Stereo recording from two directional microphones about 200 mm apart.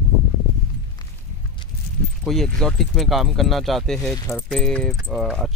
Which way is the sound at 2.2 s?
Centre (ahead or behind).